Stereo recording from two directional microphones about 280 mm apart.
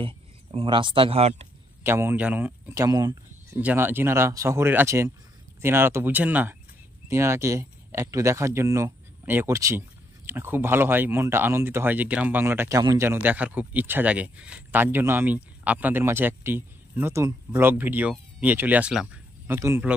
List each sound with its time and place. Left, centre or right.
0.0 s speech: centre
1.8 s speech: centre